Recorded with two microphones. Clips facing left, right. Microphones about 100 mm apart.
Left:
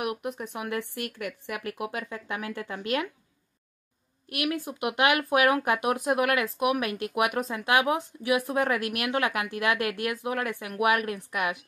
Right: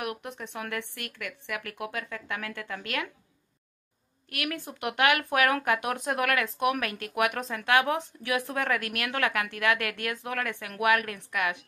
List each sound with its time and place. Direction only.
0.0 s speech: 20° left (ahead or behind)
1.2 s speech: 25° left (ahead or behind)
4.3 s speech: 20° left (ahead or behind)